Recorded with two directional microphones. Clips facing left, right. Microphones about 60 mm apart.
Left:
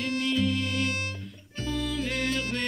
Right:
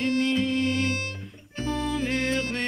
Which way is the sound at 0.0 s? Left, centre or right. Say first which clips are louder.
Right 3 dB; right.